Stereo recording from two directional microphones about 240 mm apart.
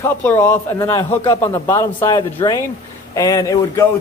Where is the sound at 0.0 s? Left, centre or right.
Centre.